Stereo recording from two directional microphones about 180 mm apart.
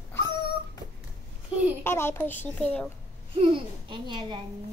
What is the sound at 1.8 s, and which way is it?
A child's voice, 15° left (ahead or behind).